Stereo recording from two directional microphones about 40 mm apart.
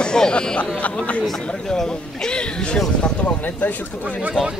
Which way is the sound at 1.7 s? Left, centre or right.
Centre.